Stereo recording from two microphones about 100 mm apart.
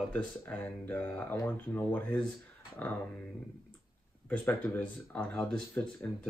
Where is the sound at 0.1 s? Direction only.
15° left (ahead or behind).